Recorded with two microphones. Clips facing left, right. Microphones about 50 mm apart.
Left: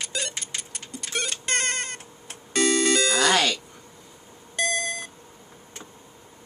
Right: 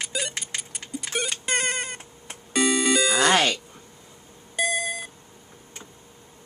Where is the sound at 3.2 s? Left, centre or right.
Right.